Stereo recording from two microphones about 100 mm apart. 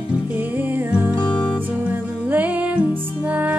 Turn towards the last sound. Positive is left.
turn(degrees=-15)  # may be behind; listen again after turning